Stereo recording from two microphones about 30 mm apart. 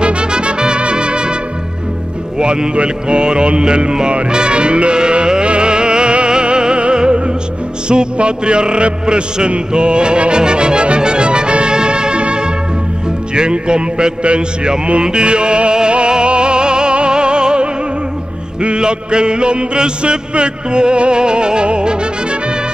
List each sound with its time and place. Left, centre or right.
0.0 s trumpet: right
2.3 s music: right